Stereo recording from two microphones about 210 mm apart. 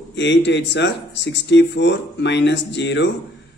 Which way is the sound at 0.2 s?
55° left (ahead or behind).